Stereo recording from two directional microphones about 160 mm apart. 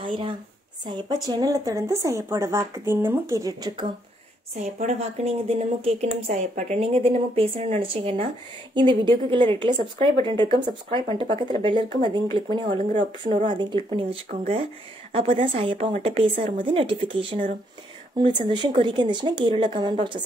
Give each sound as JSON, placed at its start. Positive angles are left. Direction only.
{"t": 0.0, "sound": "a woman's voice", "side_deg": -30}
{"t": 4.7, "sound": "a woman's voice", "side_deg": -40}
{"t": 6.8, "sound": "a woman's voice", "side_deg": -35}